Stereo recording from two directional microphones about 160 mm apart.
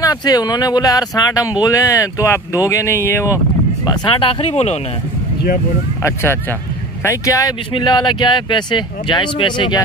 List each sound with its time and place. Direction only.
0.0 s speech: 25° left (ahead or behind)
3.8 s speech: 30° left (ahead or behind)
7.0 s speech: 20° left (ahead or behind)